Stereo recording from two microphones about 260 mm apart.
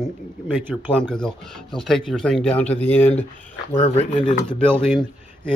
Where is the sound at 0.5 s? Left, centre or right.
Centre.